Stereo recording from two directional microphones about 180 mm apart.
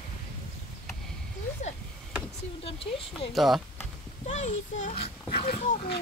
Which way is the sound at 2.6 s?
30° left (ahead or behind).